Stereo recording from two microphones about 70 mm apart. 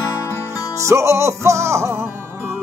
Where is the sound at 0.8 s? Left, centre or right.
Right.